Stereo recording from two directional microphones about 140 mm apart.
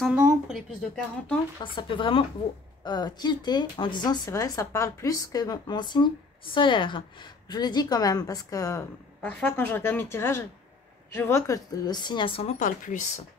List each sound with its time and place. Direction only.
0.0 s speech: 5° right (ahead or behind)
1.6 s speech: 35° left (ahead or behind)
9.2 s a woman's voice: 10° left (ahead or behind); by 12.5 s 40° left (ahead or behind)
12.5 s speech: 65° left (ahead or behind)